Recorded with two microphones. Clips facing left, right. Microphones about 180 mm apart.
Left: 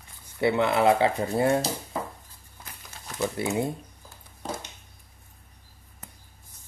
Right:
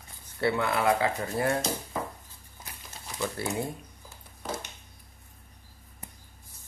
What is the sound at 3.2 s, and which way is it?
Speech, 20° left (ahead or behind).